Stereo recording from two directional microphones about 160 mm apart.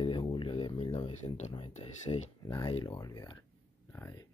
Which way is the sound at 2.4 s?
25° left (ahead or behind).